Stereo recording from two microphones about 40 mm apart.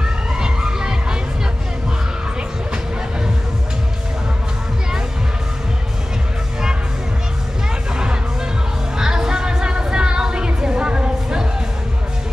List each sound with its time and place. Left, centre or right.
0.4 s music: centre
7.9 s music: centre